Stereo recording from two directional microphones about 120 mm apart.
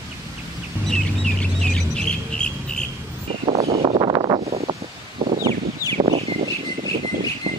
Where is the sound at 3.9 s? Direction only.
40° right (ahead or behind).